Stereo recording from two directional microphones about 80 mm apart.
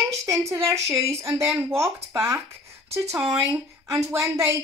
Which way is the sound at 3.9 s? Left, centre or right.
Right.